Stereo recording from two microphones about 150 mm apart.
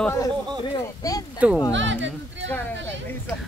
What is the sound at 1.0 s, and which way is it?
Speech, 25° left (ahead or behind).